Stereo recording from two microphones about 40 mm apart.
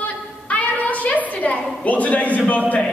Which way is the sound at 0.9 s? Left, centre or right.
Left.